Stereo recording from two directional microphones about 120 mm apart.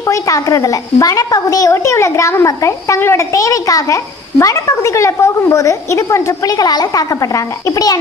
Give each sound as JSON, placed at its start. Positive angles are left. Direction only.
{"t": 0.0, "sound": "a woman's voice", "side_deg": 25}